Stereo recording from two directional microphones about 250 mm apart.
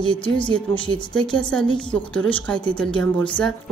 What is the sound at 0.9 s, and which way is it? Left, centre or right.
Speech, centre.